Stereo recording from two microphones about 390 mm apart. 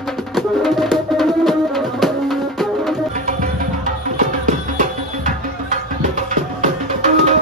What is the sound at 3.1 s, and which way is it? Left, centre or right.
Music, centre.